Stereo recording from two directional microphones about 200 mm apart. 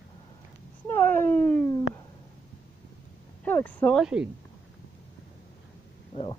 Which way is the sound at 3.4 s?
10° left (ahead or behind).